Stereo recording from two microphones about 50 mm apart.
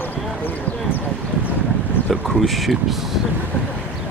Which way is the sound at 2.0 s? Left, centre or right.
Centre.